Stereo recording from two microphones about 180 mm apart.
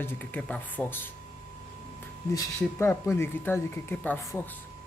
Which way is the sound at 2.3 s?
15° left (ahead or behind).